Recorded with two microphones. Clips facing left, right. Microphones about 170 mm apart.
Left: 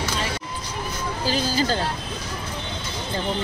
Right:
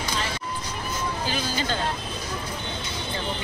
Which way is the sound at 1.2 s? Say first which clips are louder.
Left 9 dB; 35° left (ahead or behind).